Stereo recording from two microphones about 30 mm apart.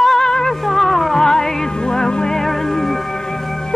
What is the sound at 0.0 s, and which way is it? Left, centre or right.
Music, centre.